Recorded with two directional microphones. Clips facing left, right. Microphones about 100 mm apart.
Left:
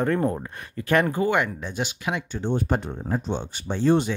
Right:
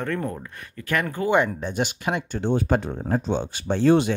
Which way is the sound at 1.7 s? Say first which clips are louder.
Right 3 dB; 50° right (ahead or behind).